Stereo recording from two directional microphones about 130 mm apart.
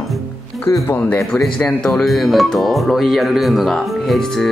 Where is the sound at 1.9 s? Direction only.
Centre (ahead or behind).